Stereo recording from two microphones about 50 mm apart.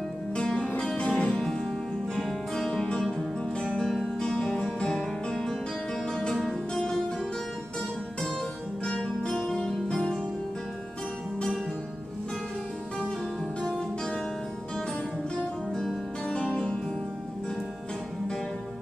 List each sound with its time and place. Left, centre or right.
0.4 s music: centre
1.4 s music: centre
6.7 s music: centre
8.9 s music: centre
9.3 s music: centre
13.6 s music: centre
16.3 s music: centre